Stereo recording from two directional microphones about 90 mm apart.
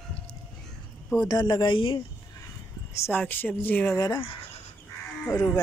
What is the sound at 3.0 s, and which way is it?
Speech, 25° left (ahead or behind).